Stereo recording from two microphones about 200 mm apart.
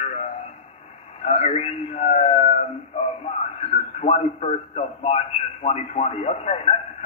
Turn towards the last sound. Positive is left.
turn(degrees=30)  # may be behind; listen again after turning